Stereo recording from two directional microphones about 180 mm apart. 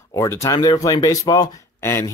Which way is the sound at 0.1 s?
15° left (ahead or behind).